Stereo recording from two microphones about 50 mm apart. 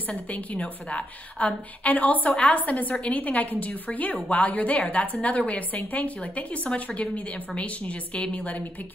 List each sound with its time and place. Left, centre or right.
0.1 s a woman's voice: left